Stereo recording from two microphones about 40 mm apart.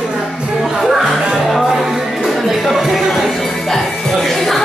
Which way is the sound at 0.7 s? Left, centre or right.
Centre.